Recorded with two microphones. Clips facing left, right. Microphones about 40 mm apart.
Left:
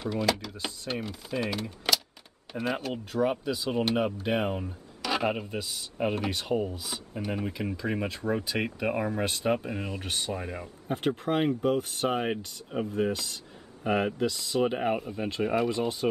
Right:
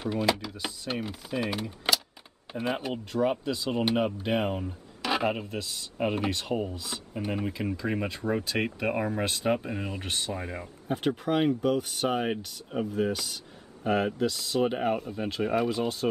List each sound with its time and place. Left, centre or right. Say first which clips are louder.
0.0 s speech: right 1 dB; centre
0.5 s speech: even; centre
0.8 s speech: right 1 dB; centre
3.1 s speech: even; centre
3.7 s speech: right 1 dB; centre
5.9 s speech: right 1 dB; centre
14.6 s speech: even; centre